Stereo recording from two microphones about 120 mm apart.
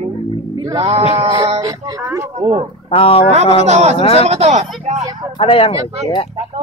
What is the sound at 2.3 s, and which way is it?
Speech, 60° right (ahead or behind).